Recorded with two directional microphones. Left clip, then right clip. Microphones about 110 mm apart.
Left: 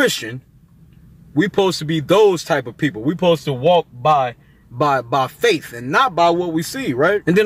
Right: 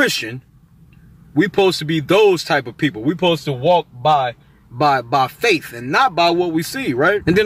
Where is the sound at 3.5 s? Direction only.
40° left (ahead or behind).